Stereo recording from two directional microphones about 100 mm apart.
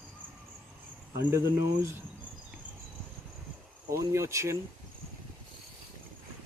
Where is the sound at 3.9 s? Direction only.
30° right (ahead or behind).